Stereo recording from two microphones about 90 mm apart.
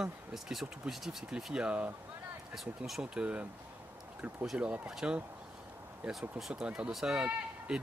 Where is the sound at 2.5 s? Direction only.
Centre (ahead or behind).